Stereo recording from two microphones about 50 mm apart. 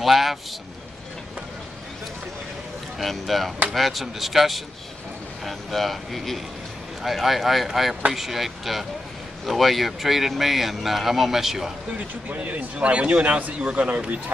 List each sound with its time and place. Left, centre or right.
0.0 s speech: centre
3.0 s speech: centre
12.3 s a man's voice: right